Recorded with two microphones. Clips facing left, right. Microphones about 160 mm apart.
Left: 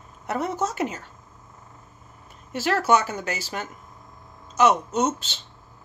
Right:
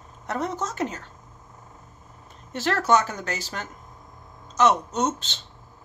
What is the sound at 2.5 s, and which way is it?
Speech, 10° left (ahead or behind).